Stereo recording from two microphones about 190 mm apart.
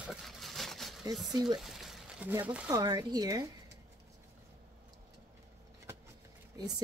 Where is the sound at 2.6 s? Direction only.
20° right (ahead or behind).